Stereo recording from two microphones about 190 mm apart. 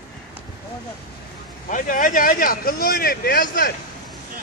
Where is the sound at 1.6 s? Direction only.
45° left (ahead or behind).